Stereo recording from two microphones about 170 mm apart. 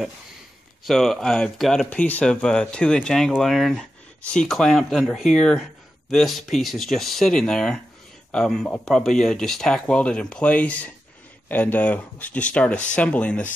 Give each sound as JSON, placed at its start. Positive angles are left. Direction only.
{"t": 0.8, "sound": "speech", "side_deg": 0}